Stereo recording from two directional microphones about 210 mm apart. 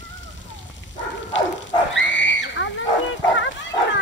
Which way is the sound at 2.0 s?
60° left (ahead or behind).